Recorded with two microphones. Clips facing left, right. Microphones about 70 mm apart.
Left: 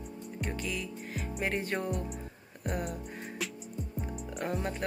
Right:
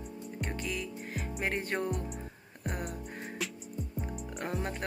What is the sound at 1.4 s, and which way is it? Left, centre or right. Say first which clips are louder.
Speech: left 1 dB; right.